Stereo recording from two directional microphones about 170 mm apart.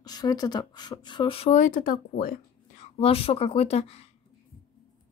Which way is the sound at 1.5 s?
55° left (ahead or behind).